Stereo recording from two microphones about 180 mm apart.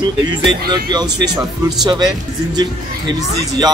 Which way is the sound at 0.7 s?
25° right (ahead or behind).